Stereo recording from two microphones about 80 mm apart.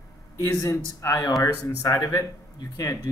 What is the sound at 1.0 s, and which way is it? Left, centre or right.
Speech, left.